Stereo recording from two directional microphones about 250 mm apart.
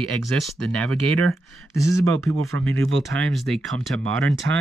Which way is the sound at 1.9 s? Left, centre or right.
Right.